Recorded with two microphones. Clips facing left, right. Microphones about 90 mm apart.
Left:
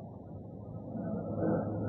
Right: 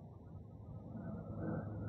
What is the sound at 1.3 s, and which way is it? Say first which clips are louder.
Vehicle: left 12 dB; 40° left (ahead or behind).